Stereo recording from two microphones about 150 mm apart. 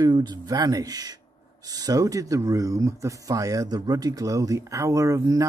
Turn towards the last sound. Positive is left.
turn(degrees=-20)  # may be behind; listen again after turning